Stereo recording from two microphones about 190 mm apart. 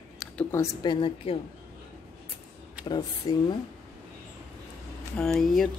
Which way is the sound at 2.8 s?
25° left (ahead or behind).